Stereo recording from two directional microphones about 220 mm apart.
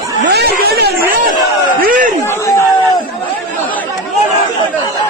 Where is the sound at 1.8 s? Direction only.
40° right (ahead or behind).